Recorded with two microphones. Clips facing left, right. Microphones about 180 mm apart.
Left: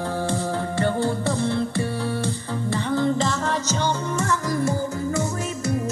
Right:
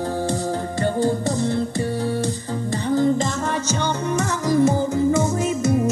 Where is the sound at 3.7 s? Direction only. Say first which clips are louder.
Right 2 dB; 55° right (ahead or behind).